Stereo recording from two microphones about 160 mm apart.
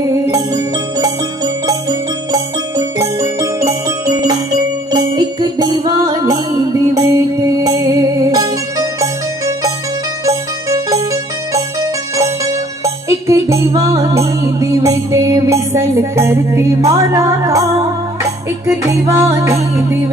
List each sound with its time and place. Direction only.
0.1 s music: 20° right (ahead or behind)
10.2 s music: 20° right (ahead or behind)